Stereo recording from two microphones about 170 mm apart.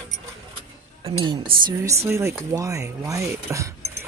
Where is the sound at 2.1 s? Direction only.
15° right (ahead or behind).